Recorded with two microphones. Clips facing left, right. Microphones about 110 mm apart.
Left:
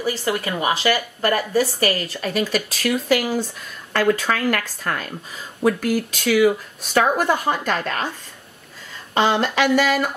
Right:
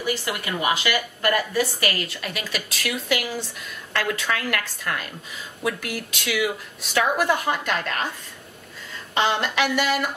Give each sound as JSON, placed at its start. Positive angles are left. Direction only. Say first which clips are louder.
{"t": 0.0, "sound": "speech", "louder": "left 4 dB", "side_deg": 35}
{"t": 9.1, "sound": "speech", "louder": "left 4 dB", "side_deg": 40}